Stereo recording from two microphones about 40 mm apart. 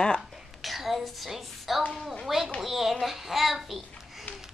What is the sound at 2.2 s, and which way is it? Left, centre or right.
A child's voice, centre.